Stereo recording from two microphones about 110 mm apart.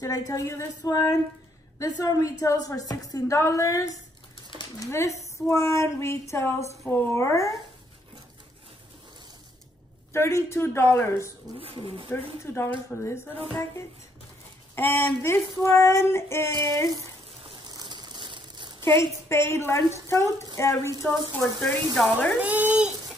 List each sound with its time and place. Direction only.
0.0 s child singing: 30° left (ahead or behind)
0.8 s a woman's voice: 40° left (ahead or behind)
2.9 s child singing: 35° left (ahead or behind)
10.1 s child singing: 25° left (ahead or behind)
11.6 s speech: 55° right (ahead or behind)
12.1 s child singing: 25° left (ahead or behind)
14.8 s child singing: 20° left (ahead or behind)
17.6 s a sound: 40° right (ahead or behind)
19.2 s child singing: 25° left (ahead or behind)
22.0 s speech: 10° left (ahead or behind)
22.4 s speech: 15° right (ahead or behind)